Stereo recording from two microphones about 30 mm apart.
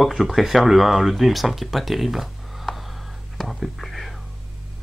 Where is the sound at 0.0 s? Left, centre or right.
Centre.